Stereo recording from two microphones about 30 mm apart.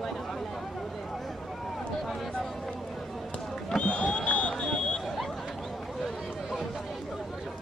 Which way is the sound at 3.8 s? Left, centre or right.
Left.